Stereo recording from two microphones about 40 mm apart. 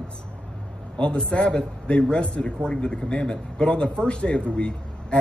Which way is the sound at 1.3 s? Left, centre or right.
Left.